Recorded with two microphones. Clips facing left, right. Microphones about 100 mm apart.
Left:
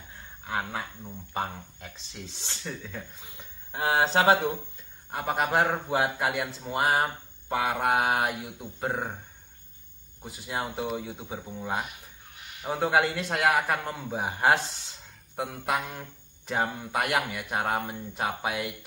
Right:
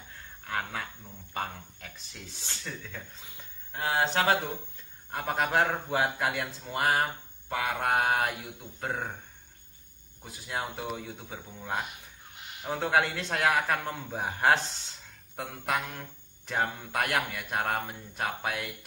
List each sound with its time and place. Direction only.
0.4 s speech: 15° left (ahead or behind)
3.8 s speech: 35° left (ahead or behind)
5.1 s speech: 10° left (ahead or behind)
10.4 s speech: 5° left (ahead or behind)